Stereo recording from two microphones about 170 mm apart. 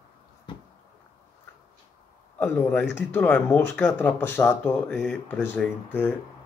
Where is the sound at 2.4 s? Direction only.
10° left (ahead or behind).